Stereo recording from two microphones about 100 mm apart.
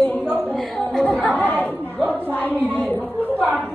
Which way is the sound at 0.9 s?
10° left (ahead or behind).